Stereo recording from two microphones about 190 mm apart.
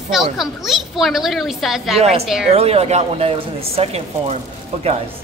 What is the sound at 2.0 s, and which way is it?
Speech, 35° right (ahead or behind).